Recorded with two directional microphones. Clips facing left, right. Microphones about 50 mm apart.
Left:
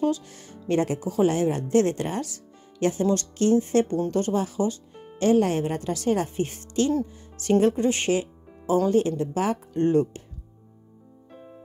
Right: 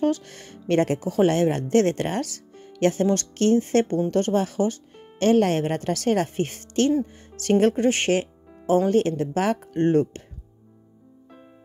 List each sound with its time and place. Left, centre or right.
0.0 s speech: right
0.3 s speech: right
4.9 s speech: right
9.4 s speech: right
9.8 s speech: right